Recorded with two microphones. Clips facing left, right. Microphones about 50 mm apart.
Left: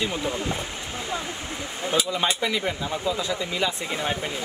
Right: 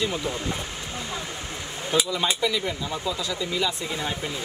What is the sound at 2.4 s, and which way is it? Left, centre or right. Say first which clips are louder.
Speech: even; left.